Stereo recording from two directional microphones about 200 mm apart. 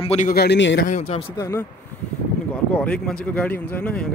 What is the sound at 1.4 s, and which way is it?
A man's voice, 15° left (ahead or behind).